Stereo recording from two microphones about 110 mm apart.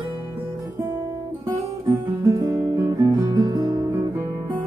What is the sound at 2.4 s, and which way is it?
Guitar, 35° right (ahead or behind).